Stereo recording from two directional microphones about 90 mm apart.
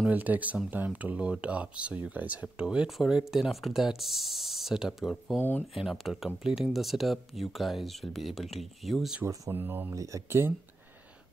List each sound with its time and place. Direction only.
0.1 s speech: 20° right (ahead or behind)
5.4 s speech: 20° left (ahead or behind)
5.8 s speech: 5° right (ahead or behind)
9.2 s speech: 40° right (ahead or behind)
9.5 s speech: 25° right (ahead or behind)
9.9 s speech: 35° right (ahead or behind)